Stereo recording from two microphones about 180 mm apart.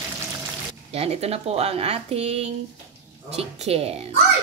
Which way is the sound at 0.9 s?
35° right (ahead or behind).